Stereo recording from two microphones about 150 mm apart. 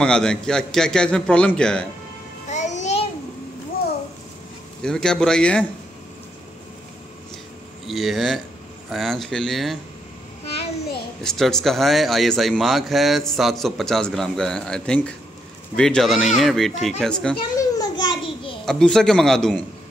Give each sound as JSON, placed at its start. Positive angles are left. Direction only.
{"t": 0.0, "sound": "speech", "side_deg": 5}
{"t": 2.5, "sound": "music", "side_deg": 50}
{"t": 4.8, "sound": "speech", "side_deg": 5}
{"t": 7.8, "sound": "speech", "side_deg": 0}
{"t": 11.2, "sound": "speech", "side_deg": 0}
{"t": 17.6, "sound": "a sound", "side_deg": 25}
{"t": 18.7, "sound": "speech", "side_deg": 5}